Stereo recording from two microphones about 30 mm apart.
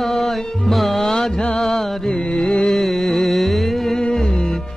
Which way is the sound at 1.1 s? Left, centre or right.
Centre.